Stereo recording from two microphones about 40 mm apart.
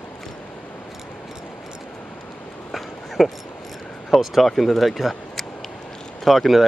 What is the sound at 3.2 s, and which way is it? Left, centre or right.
Speech, centre.